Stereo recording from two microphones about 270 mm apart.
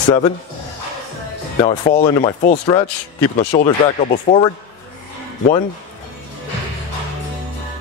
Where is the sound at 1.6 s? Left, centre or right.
Left.